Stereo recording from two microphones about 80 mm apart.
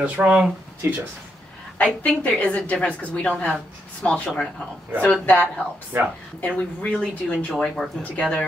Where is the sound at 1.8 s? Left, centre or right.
Centre.